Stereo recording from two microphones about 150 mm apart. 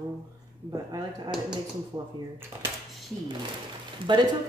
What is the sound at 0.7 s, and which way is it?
Speech, 25° right (ahead or behind).